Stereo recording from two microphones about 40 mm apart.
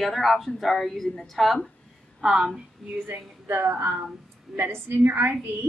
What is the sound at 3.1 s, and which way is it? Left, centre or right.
A woman's voice, right.